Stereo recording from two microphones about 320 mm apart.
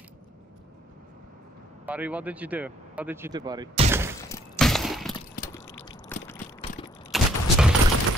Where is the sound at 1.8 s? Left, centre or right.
Centre.